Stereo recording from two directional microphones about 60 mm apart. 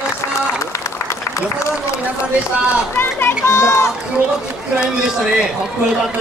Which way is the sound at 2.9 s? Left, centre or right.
Left.